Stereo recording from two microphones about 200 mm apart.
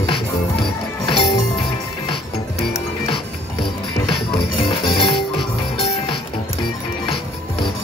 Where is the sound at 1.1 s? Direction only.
25° left (ahead or behind).